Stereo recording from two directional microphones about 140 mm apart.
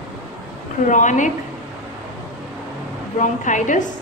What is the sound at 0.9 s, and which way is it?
Speech, 60° left (ahead or behind).